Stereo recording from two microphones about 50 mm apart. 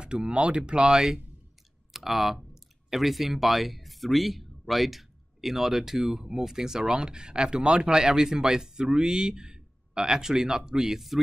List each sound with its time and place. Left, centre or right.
0.0 s speech: centre